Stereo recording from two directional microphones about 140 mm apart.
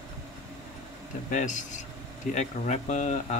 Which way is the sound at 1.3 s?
60° left (ahead or behind).